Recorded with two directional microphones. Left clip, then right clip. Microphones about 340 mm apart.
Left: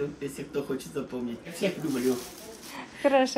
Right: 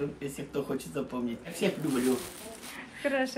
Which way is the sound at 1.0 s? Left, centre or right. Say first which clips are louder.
Even; centre.